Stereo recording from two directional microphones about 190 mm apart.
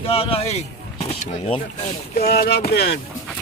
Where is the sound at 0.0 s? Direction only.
30° left (ahead or behind).